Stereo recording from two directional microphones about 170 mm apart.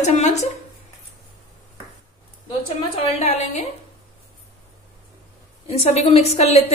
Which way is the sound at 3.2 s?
40° left (ahead or behind).